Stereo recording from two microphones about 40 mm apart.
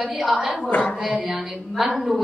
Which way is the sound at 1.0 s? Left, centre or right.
Right.